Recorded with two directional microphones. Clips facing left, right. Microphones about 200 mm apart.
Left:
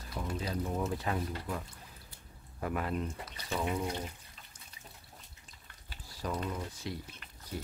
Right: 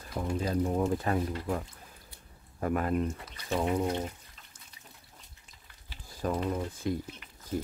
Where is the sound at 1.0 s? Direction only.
45° right (ahead or behind).